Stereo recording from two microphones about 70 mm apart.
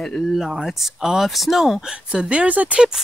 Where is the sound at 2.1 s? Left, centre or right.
Centre.